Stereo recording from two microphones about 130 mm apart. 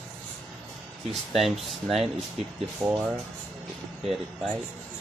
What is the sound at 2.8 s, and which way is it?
Speech, 25° right (ahead or behind).